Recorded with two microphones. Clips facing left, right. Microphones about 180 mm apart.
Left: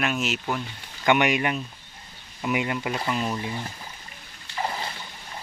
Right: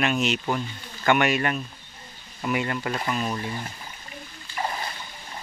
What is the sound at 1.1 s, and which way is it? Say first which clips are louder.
Speech: even; 15° left (ahead or behind).